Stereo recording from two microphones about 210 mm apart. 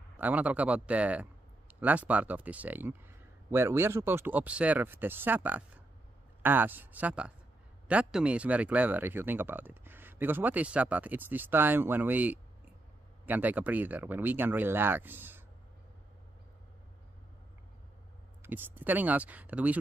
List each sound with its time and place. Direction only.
0.2 s speech: 5° right (ahead or behind)
18.4 s speech: 10° right (ahead or behind)